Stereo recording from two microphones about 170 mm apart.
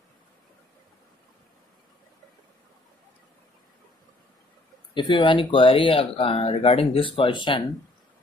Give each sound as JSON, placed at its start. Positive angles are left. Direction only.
{"t": 4.9, "sound": "speech", "side_deg": 30}